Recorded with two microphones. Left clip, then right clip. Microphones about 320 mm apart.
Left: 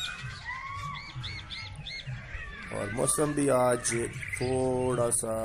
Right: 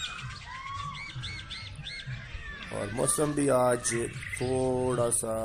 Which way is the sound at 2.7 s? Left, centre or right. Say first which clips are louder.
Even; centre.